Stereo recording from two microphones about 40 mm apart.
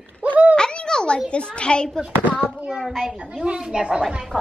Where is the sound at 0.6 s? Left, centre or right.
Left.